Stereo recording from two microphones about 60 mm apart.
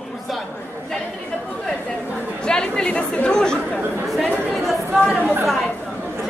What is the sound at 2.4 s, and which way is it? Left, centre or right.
Speech, centre.